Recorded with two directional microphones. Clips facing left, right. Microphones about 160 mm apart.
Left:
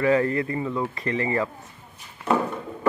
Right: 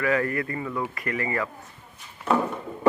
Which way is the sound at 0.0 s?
25° left (ahead or behind).